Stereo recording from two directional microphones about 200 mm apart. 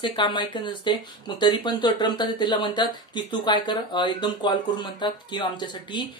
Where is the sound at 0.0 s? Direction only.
25° left (ahead or behind).